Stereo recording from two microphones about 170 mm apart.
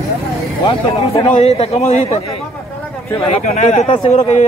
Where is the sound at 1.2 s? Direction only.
35° left (ahead or behind).